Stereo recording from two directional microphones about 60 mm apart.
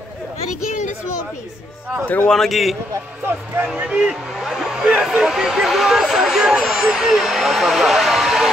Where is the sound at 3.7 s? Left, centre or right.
Right.